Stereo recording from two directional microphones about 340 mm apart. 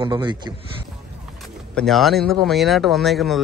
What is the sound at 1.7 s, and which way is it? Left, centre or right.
A man's voice, centre.